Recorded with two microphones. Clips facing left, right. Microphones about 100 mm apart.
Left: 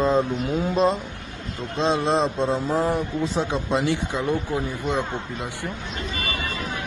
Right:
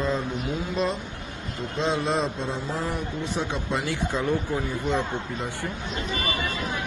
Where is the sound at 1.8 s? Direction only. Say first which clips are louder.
Left 4 dB; 25° left (ahead or behind).